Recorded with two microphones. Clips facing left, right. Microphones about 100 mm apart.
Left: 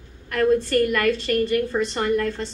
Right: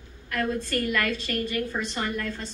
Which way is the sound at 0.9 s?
50° left (ahead or behind).